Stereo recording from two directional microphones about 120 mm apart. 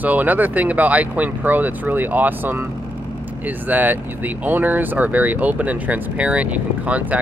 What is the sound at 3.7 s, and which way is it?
Speech, 15° right (ahead or behind).